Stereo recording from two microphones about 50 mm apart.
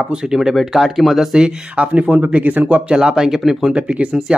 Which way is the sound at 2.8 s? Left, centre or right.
Centre.